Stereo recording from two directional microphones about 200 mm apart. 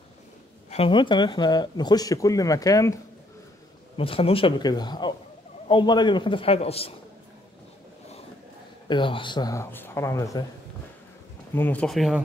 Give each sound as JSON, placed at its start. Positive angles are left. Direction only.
{"t": 0.7, "sound": "speech", "side_deg": 30}
{"t": 3.9, "sound": "speech", "side_deg": 25}
{"t": 8.8, "sound": "speech", "side_deg": 25}
{"t": 11.5, "sound": "speech", "side_deg": 10}